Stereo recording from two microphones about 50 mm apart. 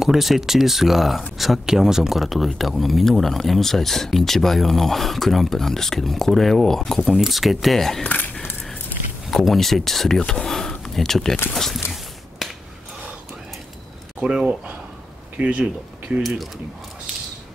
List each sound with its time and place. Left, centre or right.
0.0 s speech: centre
7.1 s speech: centre
8.1 s a sound: left
9.4 s speech: centre
12.4 s finger snapping: centre
14.2 s speech: centre
16.2 s speech: centre